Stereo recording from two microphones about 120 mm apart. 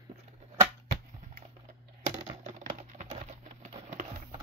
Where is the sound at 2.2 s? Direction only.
90° right.